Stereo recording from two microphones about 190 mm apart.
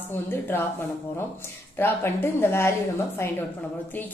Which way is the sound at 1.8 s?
10° left (ahead or behind).